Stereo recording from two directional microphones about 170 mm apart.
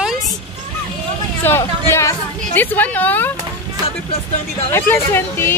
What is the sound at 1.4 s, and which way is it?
A woman's voice, 15° left (ahead or behind).